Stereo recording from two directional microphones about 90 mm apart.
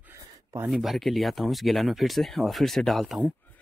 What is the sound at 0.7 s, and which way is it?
Speech, centre (ahead or behind).